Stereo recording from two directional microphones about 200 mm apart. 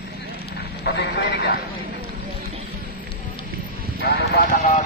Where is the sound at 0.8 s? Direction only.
55° left (ahead or behind).